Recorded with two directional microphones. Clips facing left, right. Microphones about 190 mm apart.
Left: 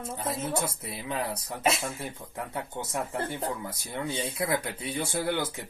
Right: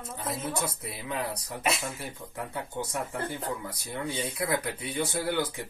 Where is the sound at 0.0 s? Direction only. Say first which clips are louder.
Left 2 dB; 25° left (ahead or behind).